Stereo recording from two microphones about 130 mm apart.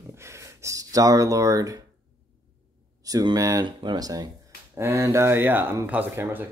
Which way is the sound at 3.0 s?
30° right (ahead or behind).